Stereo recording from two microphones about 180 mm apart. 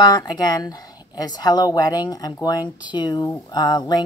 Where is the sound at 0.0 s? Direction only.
25° left (ahead or behind).